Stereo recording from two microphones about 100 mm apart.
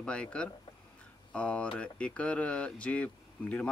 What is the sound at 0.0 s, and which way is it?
Speech, 10° left (ahead or behind).